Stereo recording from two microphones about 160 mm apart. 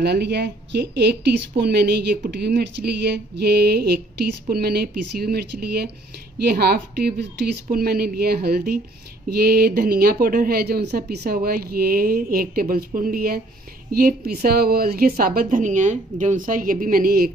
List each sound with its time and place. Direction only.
0.0 s speech: 90° right
2.4 s a sound: 90° right
7.7 s a woman's voice: 70° right (ahead or behind)